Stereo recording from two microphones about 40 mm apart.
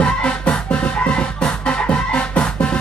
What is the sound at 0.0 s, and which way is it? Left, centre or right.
Music, left.